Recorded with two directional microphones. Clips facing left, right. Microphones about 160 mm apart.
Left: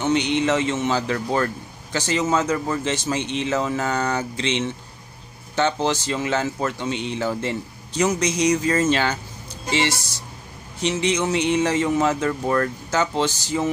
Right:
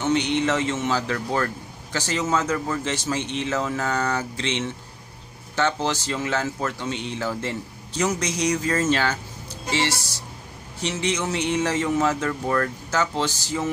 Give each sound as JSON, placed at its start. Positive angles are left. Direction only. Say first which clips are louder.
{"t": 0.0, "sound": "speech", "louder": "left 1 dB", "side_deg": 20}